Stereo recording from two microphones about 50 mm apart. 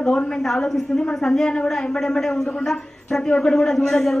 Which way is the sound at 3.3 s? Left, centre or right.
Centre.